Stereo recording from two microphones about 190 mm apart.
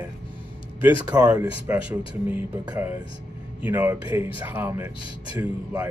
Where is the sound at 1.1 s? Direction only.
5° right (ahead or behind).